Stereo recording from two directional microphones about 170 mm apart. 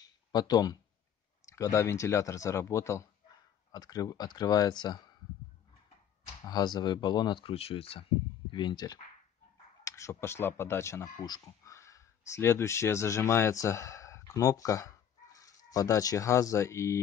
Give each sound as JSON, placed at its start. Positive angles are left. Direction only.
{"t": 0.3, "sound": "speech", "side_deg": 25}
{"t": 6.4, "sound": "speech", "side_deg": 25}